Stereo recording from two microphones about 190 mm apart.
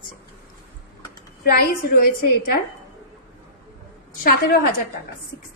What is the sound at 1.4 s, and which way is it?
A woman's voice, 55° left (ahead or behind).